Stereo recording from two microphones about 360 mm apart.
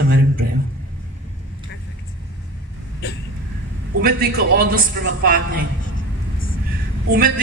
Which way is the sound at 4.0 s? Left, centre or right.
Right.